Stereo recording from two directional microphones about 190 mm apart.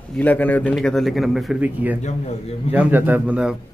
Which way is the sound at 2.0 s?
35° left (ahead or behind).